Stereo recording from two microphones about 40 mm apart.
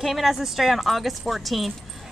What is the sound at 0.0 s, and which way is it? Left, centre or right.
Speech, centre.